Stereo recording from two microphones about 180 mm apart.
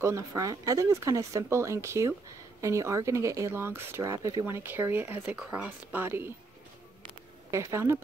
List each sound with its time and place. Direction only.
0.0 s speech: 15° right (ahead or behind)
7.5 s speech: 15° right (ahead or behind)